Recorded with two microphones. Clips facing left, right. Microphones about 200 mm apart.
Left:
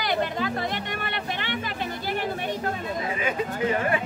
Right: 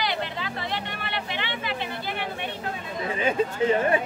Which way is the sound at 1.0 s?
45° left (ahead or behind).